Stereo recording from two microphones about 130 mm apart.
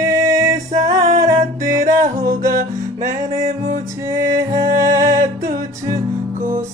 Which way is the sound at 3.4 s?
55° right (ahead or behind).